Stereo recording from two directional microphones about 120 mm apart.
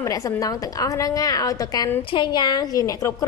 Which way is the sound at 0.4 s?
30° left (ahead or behind).